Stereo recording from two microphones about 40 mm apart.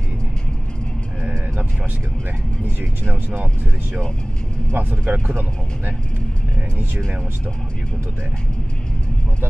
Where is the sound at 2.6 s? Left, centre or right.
Right.